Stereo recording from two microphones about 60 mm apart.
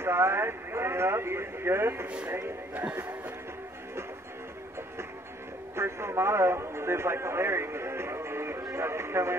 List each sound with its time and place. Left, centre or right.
0.0 s speech: right
2.7 s speech: right
5.8 s a man's voice: right